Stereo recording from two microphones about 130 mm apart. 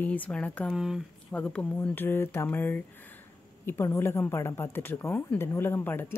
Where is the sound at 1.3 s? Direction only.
10° left (ahead or behind).